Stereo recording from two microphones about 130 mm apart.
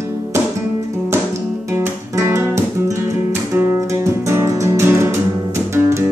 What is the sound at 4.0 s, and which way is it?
Music, 20° right (ahead or behind).